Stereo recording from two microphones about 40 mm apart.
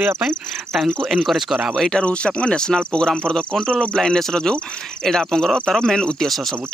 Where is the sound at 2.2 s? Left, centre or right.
Left; by 6.4 s centre.